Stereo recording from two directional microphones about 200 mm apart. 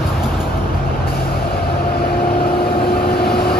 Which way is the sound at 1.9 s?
50° left (ahead or behind).